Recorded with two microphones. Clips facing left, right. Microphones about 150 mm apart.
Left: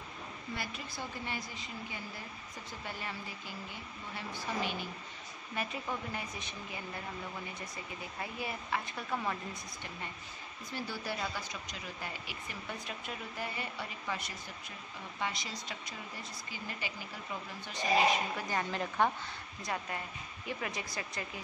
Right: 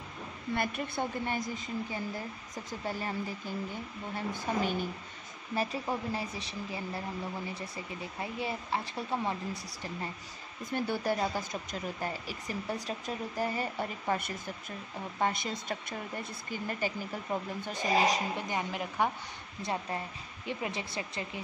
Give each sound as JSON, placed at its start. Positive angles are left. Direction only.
{"t": 0.6, "sound": "speech", "side_deg": -55}
{"t": 5.5, "sound": "speech", "side_deg": -35}
{"t": 10.7, "sound": "speech", "side_deg": -50}
{"t": 18.3, "sound": "a woman's voice", "side_deg": -15}
{"t": 19.6, "sound": "speech", "side_deg": -30}